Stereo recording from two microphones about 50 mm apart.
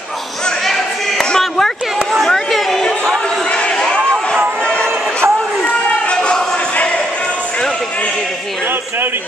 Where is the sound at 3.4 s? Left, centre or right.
Left.